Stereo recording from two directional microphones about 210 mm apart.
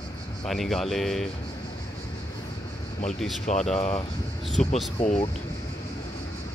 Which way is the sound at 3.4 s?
35° left (ahead or behind).